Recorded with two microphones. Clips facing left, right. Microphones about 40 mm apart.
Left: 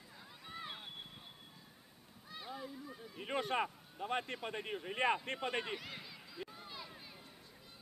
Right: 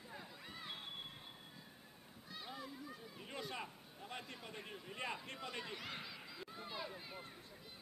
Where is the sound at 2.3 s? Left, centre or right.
Centre.